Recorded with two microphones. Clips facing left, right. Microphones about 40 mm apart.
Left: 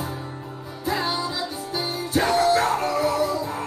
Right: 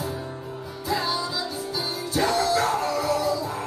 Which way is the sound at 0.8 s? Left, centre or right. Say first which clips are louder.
Left 1 dB; left.